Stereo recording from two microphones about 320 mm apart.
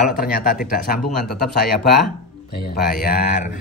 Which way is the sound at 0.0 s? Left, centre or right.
Left.